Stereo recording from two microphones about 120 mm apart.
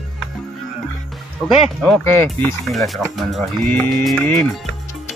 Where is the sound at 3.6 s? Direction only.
10° left (ahead or behind).